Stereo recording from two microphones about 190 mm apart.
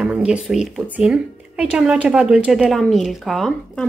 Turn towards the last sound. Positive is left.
turn(degrees=0)  # may be behind; listen again after turning